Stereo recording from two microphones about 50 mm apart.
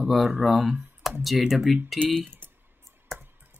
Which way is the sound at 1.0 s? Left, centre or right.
Centre.